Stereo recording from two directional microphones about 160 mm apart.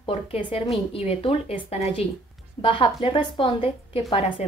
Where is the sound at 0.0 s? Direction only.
40° left (ahead or behind).